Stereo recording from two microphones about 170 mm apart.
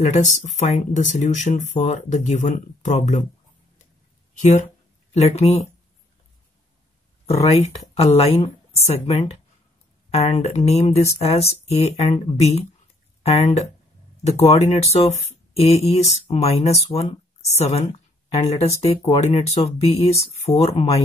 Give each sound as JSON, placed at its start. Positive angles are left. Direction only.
{"t": 0.0, "sound": "speech", "side_deg": 40}
{"t": 4.4, "sound": "speech", "side_deg": 45}
{"t": 7.5, "sound": "speech", "side_deg": 35}